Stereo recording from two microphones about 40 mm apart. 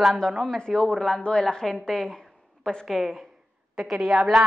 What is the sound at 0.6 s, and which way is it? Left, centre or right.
Speech, centre.